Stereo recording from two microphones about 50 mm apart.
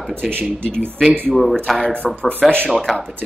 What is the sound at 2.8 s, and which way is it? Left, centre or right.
Speech, centre.